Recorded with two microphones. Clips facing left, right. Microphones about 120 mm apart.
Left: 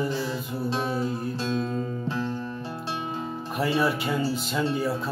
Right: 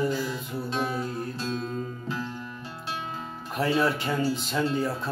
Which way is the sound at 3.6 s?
5° left (ahead or behind).